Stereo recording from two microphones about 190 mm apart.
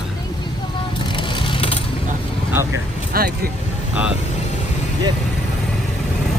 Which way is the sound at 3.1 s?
50° right (ahead or behind).